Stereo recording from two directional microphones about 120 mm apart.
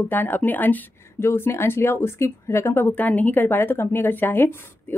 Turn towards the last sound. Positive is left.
turn(degrees=15)  # may be behind; listen again after turning